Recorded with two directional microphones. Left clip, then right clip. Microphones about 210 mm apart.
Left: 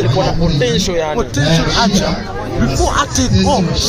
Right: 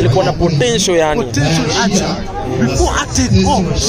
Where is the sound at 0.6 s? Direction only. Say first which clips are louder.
Right 3 dB; 55° right (ahead or behind).